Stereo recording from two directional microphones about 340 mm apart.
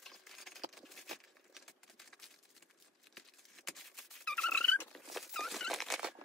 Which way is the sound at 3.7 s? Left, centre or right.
Centre.